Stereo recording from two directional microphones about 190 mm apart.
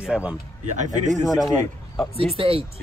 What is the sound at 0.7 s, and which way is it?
Speech, 40° right (ahead or behind).